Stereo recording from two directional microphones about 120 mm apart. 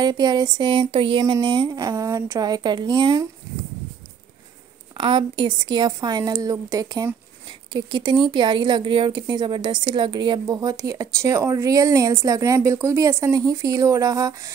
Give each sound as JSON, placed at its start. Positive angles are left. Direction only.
{"t": 0.0, "sound": "a woman's voice", "side_deg": -35}
{"t": 1.8, "sound": "a woman's voice", "side_deg": -25}
{"t": 5.0, "sound": "a woman's voice", "side_deg": -45}